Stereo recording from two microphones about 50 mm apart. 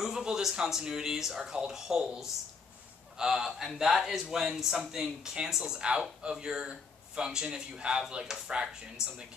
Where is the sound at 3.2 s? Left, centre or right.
Centre.